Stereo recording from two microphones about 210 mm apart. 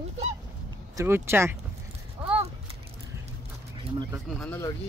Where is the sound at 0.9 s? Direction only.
10° right (ahead or behind).